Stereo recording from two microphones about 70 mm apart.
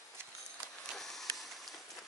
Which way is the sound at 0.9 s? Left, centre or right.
Centre.